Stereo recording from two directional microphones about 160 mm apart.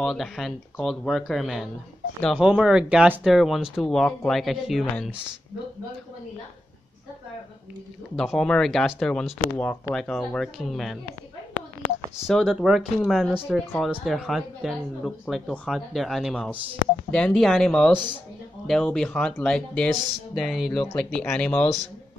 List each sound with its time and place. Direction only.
0.0 s speech: centre (ahead or behind)
8.2 s speech: 5° left (ahead or behind)
12.3 s speech: centre (ahead or behind)
17.9 s speech: 30° right (ahead or behind)
18.7 s speech: 5° left (ahead or behind)